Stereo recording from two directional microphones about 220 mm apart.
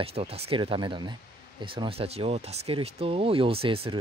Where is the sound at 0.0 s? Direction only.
25° right (ahead or behind).